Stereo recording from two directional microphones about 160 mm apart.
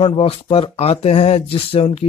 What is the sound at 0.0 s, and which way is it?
Speech, 35° left (ahead or behind).